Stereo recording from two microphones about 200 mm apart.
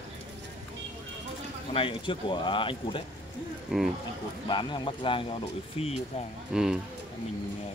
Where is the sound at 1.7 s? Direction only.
25° left (ahead or behind).